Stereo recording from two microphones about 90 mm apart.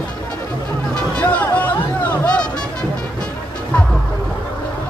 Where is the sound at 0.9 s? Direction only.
15° left (ahead or behind).